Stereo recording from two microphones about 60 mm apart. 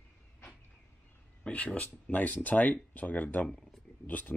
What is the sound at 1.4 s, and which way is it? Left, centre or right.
Speech, left.